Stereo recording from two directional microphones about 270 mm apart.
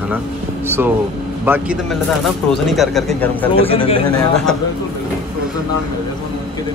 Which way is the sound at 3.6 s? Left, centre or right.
Left.